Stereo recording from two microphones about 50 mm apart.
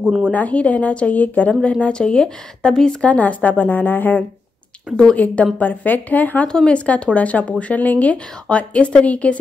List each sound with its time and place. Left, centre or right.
0.3 s a woman's voice: left
1.6 s a woman's voice: left
3.0 s speech: left
6.4 s a woman's voice: centre